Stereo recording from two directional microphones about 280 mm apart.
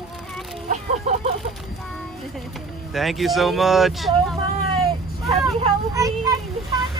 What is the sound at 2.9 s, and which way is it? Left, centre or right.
Speech, centre.